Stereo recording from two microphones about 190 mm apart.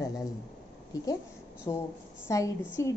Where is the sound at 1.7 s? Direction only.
20° left (ahead or behind).